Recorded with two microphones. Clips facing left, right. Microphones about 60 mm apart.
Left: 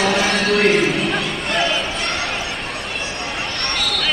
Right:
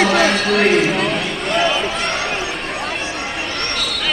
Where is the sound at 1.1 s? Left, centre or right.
Centre.